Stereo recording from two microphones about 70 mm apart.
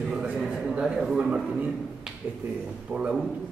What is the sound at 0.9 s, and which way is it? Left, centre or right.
Speech, centre.